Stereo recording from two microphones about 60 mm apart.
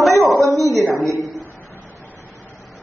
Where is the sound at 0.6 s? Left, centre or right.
Left.